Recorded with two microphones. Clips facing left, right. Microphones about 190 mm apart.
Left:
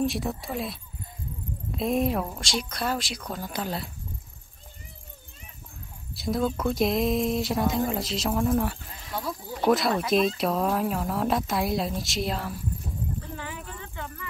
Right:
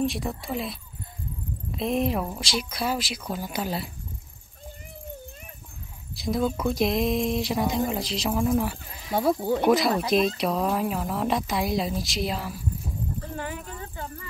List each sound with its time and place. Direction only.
0.0 s speech: centre (ahead or behind)
6.1 s speech: centre (ahead or behind)
9.1 s speech: 65° right (ahead or behind)
9.7 s speech: centre (ahead or behind)
13.4 s a sound: 45° right (ahead or behind)